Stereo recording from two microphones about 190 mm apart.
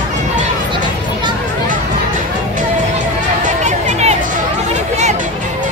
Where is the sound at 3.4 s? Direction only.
40° right (ahead or behind).